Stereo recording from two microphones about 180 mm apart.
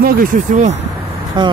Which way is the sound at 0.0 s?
55° right (ahead or behind).